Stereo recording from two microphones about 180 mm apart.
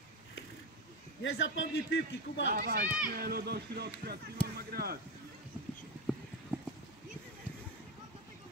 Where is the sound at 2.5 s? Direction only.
55° right (ahead or behind).